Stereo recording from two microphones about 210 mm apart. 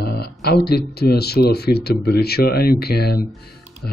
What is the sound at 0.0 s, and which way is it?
Speech, 50° left (ahead or behind).